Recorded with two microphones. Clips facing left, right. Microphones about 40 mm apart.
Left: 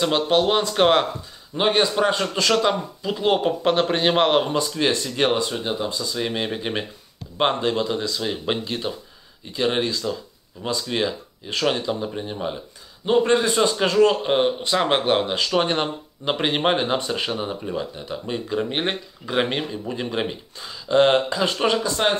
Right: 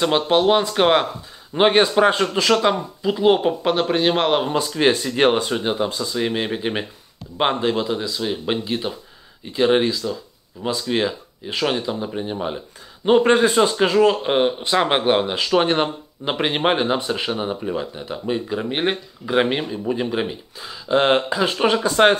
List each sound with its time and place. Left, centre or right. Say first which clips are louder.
0.0 s speech: right 2 dB; centre
1.5 s speech: right 4 dB; right; by 4.5 s centre
4.5 s speech: right 3 dB; centre
6.0 s speech: right 3 dB; centre
13.0 s speech: right 3 dB; right
13.4 s speech: right 4 dB; centre